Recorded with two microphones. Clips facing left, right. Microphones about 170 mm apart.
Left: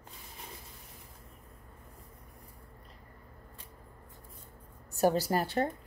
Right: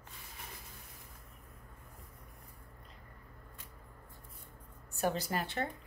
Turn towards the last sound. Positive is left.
turn(degrees=40)  # may be behind; listen again after turning